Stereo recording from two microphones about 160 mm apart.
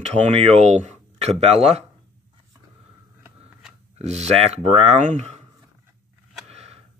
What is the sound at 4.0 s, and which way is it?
Speech, 45° right (ahead or behind).